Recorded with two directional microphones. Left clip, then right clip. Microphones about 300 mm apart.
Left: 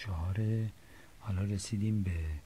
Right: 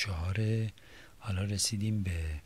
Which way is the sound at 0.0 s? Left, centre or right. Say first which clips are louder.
Right 6 dB; right.